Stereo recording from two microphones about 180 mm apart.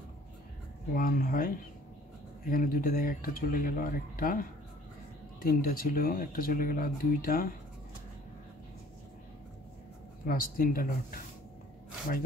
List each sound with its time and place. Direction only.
0.9 s speech: 50° left (ahead or behind)
10.2 s speech: 55° left (ahead or behind)